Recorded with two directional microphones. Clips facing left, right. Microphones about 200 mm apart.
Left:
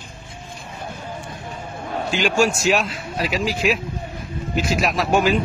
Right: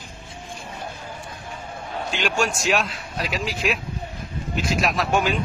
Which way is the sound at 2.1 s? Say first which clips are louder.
Left 5 dB; centre (ahead or behind).